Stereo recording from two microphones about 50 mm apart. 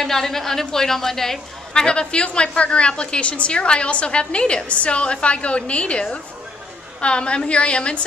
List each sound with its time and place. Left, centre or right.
0.0 s a woman's voice: centre
1.7 s a woman's voice: centre